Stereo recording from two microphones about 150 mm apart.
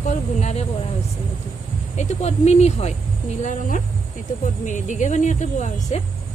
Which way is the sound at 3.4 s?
60° left (ahead or behind).